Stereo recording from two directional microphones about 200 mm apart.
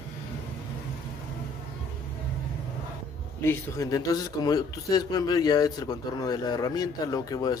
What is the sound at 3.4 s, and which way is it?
Speech, 15° left (ahead or behind).